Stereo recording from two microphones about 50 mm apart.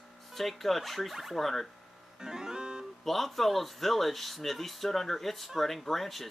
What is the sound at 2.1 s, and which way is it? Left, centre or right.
Music, centre.